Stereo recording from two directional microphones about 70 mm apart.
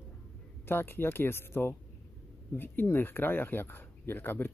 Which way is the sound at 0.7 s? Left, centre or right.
Left.